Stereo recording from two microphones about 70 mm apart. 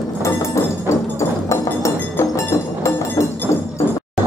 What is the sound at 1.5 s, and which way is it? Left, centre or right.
Music, left.